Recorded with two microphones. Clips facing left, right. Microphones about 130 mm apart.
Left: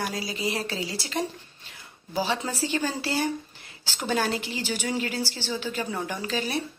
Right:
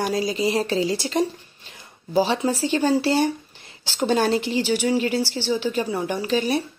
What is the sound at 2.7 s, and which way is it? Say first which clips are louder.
Speech: right 9 dB; 30° right (ahead or behind).